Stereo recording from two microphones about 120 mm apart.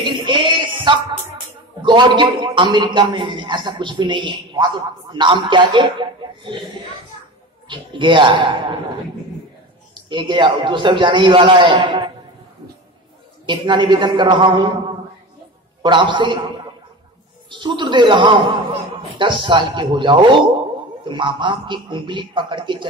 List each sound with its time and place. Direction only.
0.0 s a sound: 40° right (ahead or behind)
1.8 s a man's voice: 40° right (ahead or behind)
7.6 s a man's voice: 40° right (ahead or behind)
10.0 s a man's voice: 40° right (ahead or behind)
13.5 s a man's voice: 40° right (ahead or behind)
15.8 s a man's voice: 40° right (ahead or behind)
17.5 s a man's voice: 40° right (ahead or behind)